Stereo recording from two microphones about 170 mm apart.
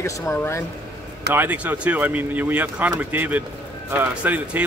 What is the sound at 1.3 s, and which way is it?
Speech, 10° right (ahead or behind).